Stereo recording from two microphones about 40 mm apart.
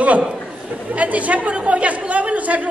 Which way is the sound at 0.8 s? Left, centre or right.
Right.